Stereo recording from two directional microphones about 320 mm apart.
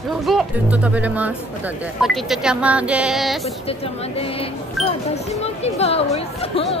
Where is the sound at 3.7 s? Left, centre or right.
Centre.